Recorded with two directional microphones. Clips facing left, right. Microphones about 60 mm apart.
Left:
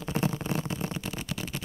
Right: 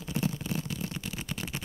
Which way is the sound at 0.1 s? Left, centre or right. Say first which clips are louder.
Left 3 dB; left.